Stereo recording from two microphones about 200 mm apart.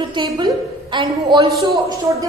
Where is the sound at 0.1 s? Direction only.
25° right (ahead or behind).